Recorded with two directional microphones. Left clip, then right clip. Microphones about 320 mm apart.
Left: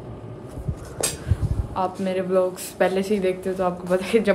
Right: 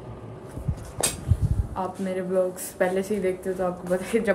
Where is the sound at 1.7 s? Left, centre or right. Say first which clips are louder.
Left 5 dB; centre.